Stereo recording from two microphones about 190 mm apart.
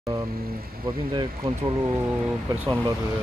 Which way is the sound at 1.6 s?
10° right (ahead or behind).